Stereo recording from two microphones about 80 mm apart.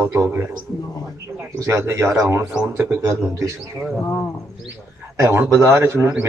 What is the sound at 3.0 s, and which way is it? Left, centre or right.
Speech, right.